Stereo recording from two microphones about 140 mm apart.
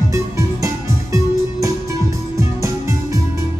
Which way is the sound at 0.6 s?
20° right (ahead or behind).